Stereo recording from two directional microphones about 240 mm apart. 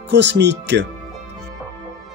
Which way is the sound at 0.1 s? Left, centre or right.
Right.